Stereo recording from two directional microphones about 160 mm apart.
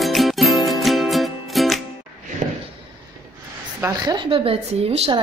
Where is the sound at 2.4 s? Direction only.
45° right (ahead or behind).